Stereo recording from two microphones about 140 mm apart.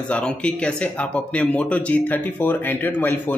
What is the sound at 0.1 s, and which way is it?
Speech, 5° left (ahead or behind).